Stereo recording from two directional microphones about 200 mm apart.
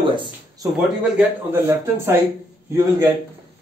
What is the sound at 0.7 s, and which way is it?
A man's voice, 10° right (ahead or behind).